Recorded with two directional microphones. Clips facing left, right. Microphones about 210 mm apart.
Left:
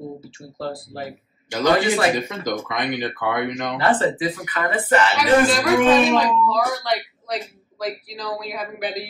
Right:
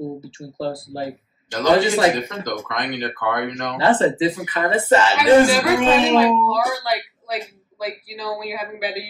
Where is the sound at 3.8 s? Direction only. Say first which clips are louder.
Right 4 dB; 20° right (ahead or behind).